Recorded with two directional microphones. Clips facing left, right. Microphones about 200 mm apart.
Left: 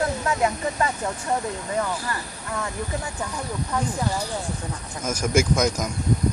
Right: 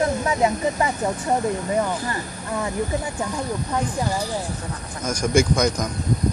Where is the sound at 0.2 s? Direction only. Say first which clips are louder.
Right 3 dB; 20° right (ahead or behind).